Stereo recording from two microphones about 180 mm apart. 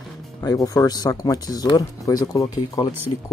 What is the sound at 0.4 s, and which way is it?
Speech, 20° left (ahead or behind).